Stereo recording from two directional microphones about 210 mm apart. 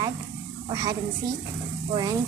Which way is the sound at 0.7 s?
15° right (ahead or behind).